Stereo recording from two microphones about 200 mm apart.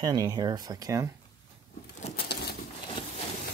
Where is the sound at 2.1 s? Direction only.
55° left (ahead or behind).